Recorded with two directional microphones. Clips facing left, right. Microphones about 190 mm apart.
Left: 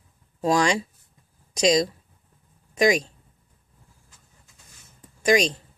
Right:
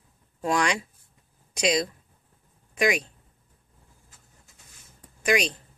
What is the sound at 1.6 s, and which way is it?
Speech, 40° left (ahead or behind).